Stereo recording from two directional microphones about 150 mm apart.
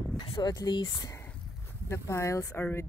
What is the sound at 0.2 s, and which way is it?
Speech, 25° left (ahead or behind).